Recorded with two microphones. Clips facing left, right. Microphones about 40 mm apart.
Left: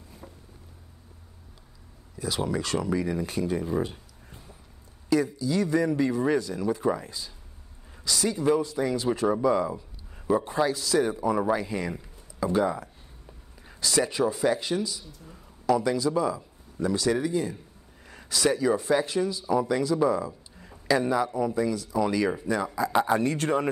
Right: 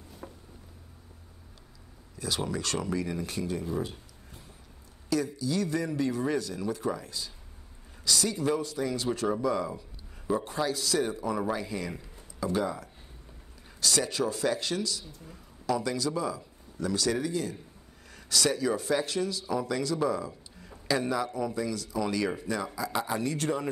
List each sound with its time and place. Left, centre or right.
0.2 s a sound: centre
2.1 s speech: centre
3.5 s speech: left
3.8 s a sound: centre
5.1 s speech: left
23.1 s speech: left